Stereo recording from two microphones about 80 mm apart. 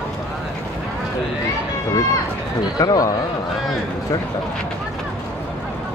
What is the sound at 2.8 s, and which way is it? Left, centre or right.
Speech, left.